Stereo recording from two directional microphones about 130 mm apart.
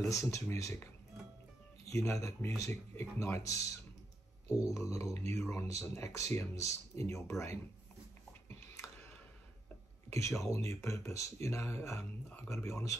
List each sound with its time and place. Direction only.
0.1 s speech: 25° left (ahead or behind)
1.9 s speech: 25° left (ahead or behind)
4.6 s speech: 25° left (ahead or behind)
8.3 s a sound: 20° left (ahead or behind)
10.0 s speech: 20° left (ahead or behind)